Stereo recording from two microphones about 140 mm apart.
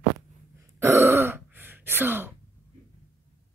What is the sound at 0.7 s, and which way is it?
Throat clearing, 20° right (ahead or behind).